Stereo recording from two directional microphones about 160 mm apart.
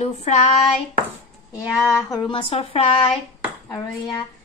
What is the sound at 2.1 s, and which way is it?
A woman's voice, 35° left (ahead or behind).